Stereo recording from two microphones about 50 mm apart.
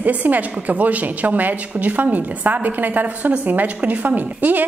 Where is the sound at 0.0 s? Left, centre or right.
Right.